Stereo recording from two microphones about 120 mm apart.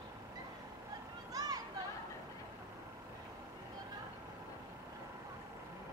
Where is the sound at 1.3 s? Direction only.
30° right (ahead or behind).